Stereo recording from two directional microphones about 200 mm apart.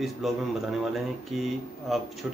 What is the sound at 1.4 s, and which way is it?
Speech, centre (ahead or behind).